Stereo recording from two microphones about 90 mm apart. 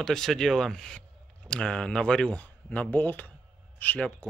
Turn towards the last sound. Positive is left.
turn(degrees=15)  # may be behind; listen again after turning